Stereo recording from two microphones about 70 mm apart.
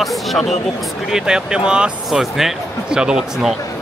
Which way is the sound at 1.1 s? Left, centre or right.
Centre.